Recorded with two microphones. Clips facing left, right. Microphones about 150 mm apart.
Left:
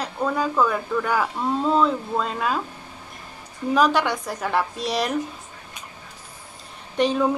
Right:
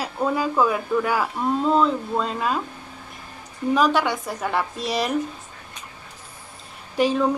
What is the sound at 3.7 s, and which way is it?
A woman's voice, centre (ahead or behind).